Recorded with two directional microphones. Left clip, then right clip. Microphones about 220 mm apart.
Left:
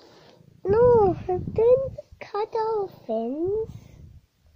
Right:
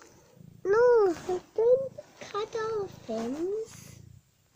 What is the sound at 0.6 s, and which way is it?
Babbling, 55° right (ahead or behind).